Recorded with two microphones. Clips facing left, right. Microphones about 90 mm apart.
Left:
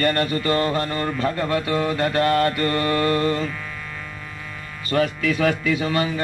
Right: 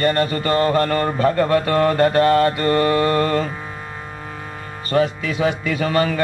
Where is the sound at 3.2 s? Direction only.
45° right (ahead or behind).